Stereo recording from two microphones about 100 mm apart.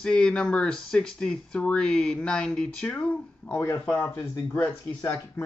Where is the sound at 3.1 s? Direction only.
25° left (ahead or behind).